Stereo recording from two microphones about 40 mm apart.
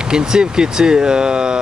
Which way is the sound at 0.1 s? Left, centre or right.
Centre.